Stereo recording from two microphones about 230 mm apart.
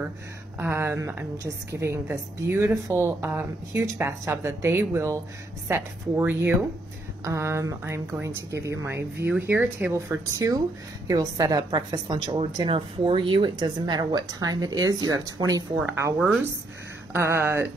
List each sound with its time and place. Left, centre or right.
0.6 s a woman's voice: centre